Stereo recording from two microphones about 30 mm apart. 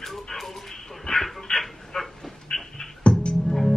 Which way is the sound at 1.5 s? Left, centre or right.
Left.